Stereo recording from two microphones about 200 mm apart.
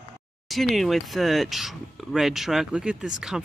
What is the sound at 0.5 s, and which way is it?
Speech, centre (ahead or behind).